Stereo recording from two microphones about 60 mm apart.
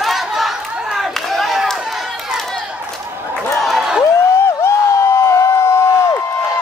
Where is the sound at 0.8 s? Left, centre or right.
Centre.